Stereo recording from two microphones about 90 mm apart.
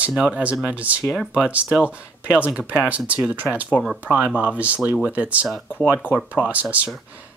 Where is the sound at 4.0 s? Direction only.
15° right (ahead or behind).